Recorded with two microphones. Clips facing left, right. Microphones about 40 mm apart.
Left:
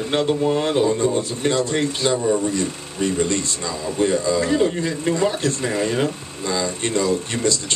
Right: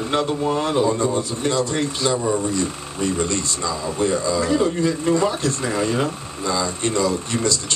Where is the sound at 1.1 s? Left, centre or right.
Left.